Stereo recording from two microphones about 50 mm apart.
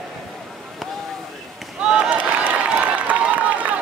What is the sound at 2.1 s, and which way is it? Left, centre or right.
Applause, right.